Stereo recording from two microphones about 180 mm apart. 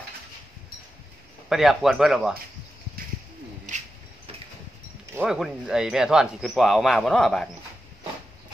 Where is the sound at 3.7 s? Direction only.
45° right (ahead or behind).